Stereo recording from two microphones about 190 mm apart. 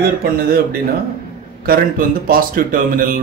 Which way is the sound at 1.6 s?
50° right (ahead or behind).